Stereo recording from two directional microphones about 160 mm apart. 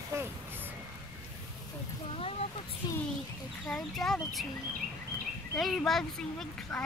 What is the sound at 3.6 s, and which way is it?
Speech, 5° left (ahead or behind).